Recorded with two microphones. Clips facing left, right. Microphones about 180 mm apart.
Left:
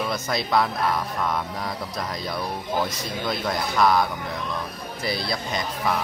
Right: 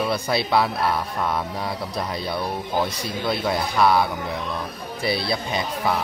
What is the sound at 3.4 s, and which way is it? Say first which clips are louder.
Speech: right 1 dB; 5° right (ahead or behind).